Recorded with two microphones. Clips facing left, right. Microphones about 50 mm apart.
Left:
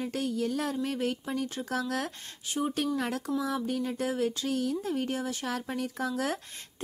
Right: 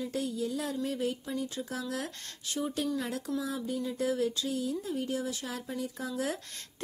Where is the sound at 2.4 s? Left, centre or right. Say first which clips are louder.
Left 3 dB; left.